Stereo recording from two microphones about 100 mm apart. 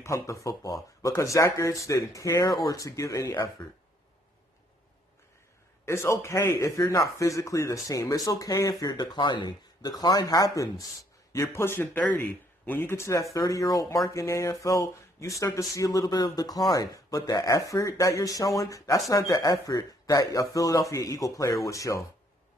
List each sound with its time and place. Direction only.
0.0 s speech: 30° left (ahead or behind)
5.9 s speech: 30° left (ahead or behind)